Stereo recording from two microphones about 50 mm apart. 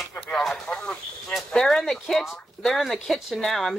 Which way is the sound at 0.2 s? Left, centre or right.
Left.